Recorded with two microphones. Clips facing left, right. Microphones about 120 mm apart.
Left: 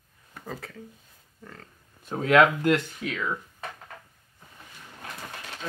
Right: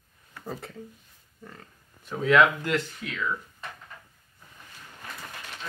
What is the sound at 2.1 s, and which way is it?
Speech, 50° left (ahead or behind).